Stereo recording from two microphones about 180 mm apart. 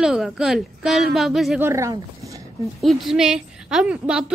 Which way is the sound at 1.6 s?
15° right (ahead or behind).